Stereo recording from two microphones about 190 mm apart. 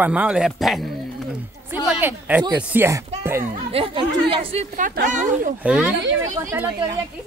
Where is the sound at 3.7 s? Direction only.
30° right (ahead or behind).